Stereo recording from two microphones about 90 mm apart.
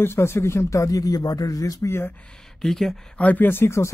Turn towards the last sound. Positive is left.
turn(degrees=30)  # may be behind; listen again after turning